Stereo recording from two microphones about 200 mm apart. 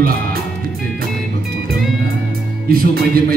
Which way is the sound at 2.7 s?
50° right (ahead or behind).